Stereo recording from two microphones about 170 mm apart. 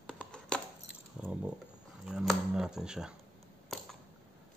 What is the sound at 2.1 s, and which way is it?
Speech, 5° right (ahead or behind).